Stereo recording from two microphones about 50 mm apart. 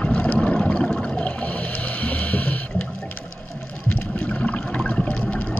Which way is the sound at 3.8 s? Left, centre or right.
Left.